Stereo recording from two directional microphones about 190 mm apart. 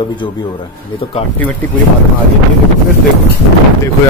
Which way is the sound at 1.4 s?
10° left (ahead or behind).